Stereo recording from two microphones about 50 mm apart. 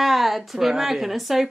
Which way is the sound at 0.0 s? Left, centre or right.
Centre.